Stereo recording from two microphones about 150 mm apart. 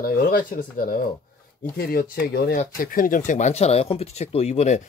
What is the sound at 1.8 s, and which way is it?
Speech, 85° left.